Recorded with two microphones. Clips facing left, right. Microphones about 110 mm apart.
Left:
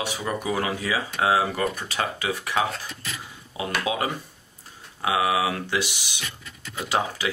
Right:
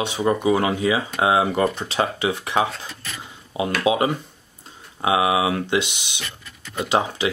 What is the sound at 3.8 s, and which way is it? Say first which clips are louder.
Speech: right 8 dB; 20° right (ahead or behind).